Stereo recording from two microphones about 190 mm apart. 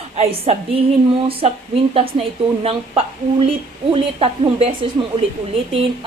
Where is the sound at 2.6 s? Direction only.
30° right (ahead or behind).